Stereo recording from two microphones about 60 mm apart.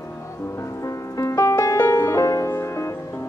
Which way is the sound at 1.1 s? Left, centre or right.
Left.